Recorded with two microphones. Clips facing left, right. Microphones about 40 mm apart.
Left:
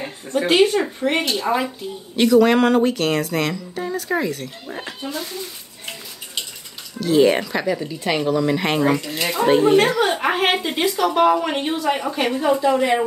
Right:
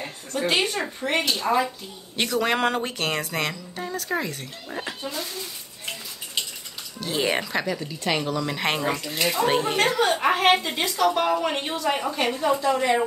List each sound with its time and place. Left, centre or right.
0.0 s a sound: centre
0.6 s a woman's voice: centre
2.1 s speech: centre
7.0 s a woman's voice: centre